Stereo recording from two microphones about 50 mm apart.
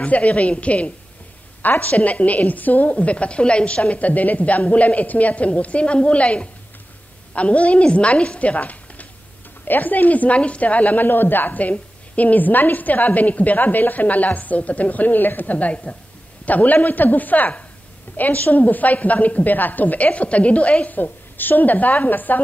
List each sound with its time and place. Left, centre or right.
0.0 s a woman's voice: left